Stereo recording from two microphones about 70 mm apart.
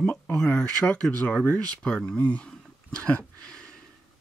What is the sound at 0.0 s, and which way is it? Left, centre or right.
Speech, centre.